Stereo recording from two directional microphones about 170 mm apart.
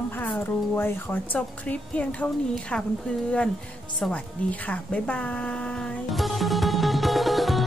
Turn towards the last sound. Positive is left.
turn(degrees=0)  # may be behind; listen again after turning